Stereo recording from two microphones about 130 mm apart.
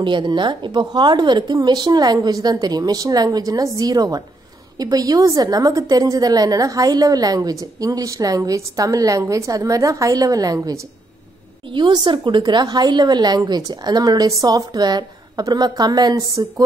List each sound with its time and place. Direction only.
0.0 s a woman's voice: 35° right (ahead or behind)